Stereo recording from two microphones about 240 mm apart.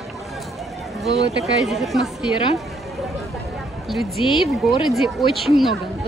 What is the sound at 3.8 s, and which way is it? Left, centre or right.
A woman's voice, centre.